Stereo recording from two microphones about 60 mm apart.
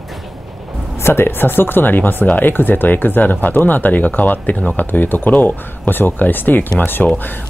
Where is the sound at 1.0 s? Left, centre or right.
Left.